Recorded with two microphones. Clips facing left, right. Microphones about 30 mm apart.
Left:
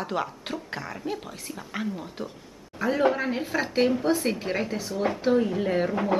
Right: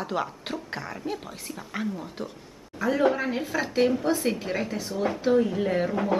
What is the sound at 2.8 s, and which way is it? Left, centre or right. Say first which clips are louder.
A woman's voice: even; centre.